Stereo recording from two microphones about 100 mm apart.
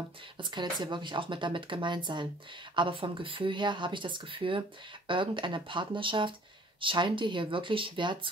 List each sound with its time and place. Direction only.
0.4 s a woman's voice: 50° right (ahead or behind)